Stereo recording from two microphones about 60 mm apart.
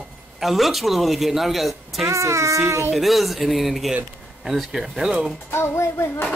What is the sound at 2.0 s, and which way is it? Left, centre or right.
Speech, right.